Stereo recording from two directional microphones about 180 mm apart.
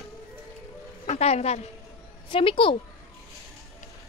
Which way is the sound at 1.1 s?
35° left (ahead or behind).